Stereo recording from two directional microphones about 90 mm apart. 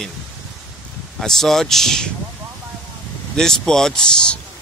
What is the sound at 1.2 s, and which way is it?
Speech, 5° left (ahead or behind).